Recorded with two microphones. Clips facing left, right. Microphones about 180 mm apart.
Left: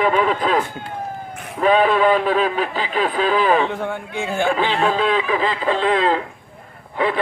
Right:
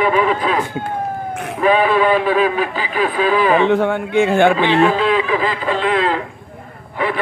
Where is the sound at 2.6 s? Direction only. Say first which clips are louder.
Right 2 dB; 35° left (ahead or behind).